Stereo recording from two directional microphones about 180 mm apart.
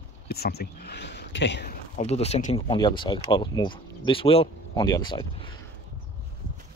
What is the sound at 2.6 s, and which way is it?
Speech, 25° left (ahead or behind).